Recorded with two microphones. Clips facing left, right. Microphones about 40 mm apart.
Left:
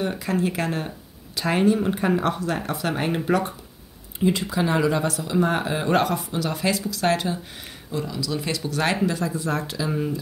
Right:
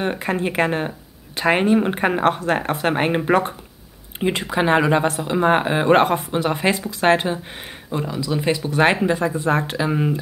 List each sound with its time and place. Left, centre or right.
0.0 s speech: right